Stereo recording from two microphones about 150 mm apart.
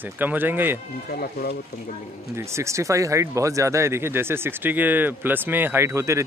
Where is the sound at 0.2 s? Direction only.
10° right (ahead or behind).